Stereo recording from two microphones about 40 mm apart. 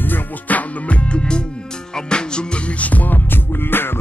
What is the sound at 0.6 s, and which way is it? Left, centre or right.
Music, left.